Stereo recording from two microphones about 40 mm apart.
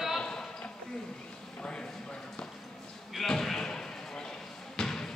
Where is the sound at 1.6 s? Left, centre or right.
Left.